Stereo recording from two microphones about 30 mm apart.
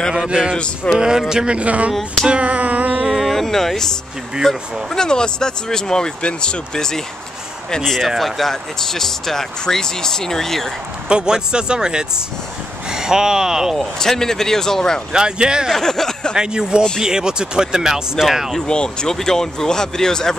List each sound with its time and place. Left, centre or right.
0.1 s speech: right
1.5 s speech: right
2.4 s a sound: right
3.1 s speech: centre
3.3 s speech: centre
4.5 s speech: left
8.2 s speech: centre
11.1 s speech: right
13.7 s speech: centre
15.1 s speech: right
15.7 s speech: centre
16.3 s speech: right
18.7 s speech: left
19.0 s speech: centre